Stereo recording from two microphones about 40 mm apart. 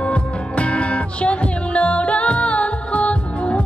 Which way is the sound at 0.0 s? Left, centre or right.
Left.